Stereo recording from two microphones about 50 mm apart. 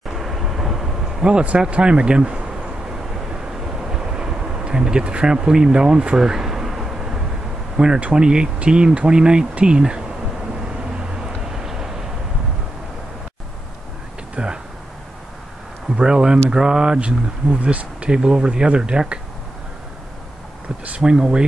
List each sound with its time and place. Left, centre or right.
0.1 s vehicle: centre
1.2 s speech: right
3.9 s a sound: centre
7.7 s speech: centre
11.0 s vehicle: centre
14.3 s a sound: centre
16.0 s a sound: centre
16.4 s speech: centre
20.8 s speech: right